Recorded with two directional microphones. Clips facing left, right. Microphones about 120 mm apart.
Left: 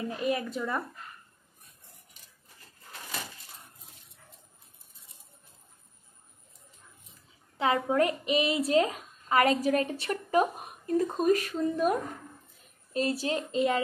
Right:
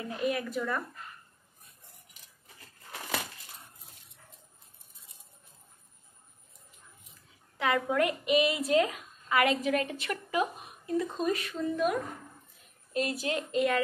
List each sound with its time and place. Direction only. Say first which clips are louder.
0.3 s a woman's voice: left 3 dB; 25° left (ahead or behind)
7.5 s a woman's voice: left 2 dB; 30° left (ahead or behind)